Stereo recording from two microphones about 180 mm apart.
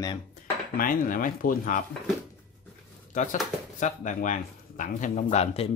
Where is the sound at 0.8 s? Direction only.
50° left (ahead or behind).